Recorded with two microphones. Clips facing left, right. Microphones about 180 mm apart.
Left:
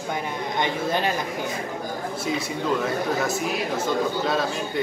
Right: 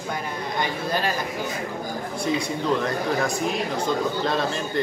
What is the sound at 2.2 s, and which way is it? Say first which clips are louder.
Speech: right 3 dB; 5° left (ahead or behind).